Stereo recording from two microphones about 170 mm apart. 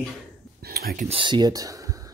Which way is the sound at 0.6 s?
65° right (ahead or behind).